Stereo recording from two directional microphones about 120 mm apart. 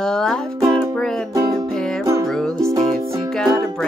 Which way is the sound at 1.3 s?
30° right (ahead or behind).